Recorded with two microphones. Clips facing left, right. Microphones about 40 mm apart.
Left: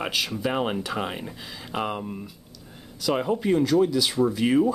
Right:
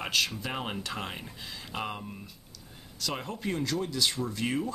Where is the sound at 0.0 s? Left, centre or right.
Centre.